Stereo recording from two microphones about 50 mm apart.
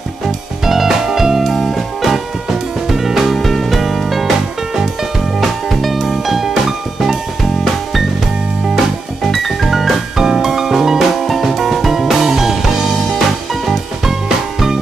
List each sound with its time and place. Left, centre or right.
0.7 s music: centre
5.4 s music: centre
8.7 s music: centre